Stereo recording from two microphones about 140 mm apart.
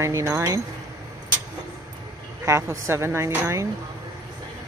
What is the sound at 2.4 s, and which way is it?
Speech, 20° right (ahead or behind).